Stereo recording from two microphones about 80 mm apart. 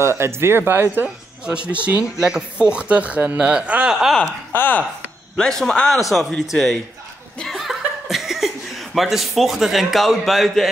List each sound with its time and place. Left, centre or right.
0.0 s speech: right
1.0 s a man's voice: centre
4.5 s speech: left
5.4 s a man's voice: centre
7.4 s laughter: centre
8.9 s a man's voice: centre